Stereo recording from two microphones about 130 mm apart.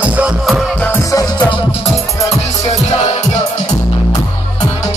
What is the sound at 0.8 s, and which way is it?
Music, 20° left (ahead or behind).